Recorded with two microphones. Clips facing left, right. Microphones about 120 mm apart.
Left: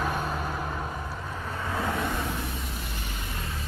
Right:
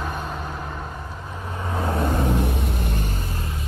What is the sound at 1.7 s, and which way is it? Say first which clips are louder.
Vehicle: right 6 dB; 30° right (ahead or behind).